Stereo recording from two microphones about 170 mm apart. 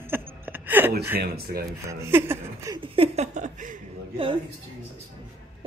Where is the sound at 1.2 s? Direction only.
65° right (ahead or behind).